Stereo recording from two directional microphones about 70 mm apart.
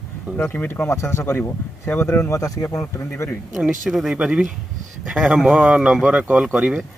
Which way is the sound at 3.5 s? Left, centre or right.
Centre.